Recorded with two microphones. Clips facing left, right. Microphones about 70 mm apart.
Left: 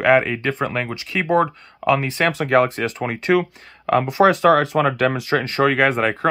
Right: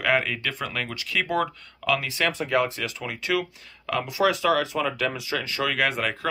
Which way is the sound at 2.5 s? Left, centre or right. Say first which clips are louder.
Left 7 dB; left.